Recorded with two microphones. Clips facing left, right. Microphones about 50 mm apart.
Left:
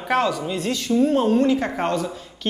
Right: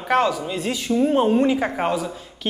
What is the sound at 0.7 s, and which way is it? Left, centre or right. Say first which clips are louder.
A man's voice: even; centre.